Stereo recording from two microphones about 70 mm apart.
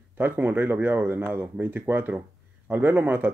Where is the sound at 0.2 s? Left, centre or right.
Right.